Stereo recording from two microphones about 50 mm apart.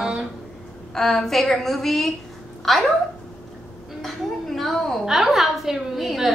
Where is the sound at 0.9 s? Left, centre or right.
Centre.